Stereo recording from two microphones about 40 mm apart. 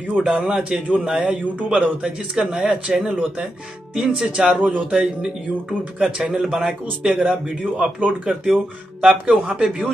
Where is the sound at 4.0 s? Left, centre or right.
Centre.